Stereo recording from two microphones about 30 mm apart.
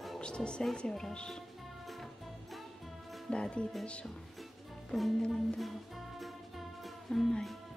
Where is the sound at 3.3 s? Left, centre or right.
Left.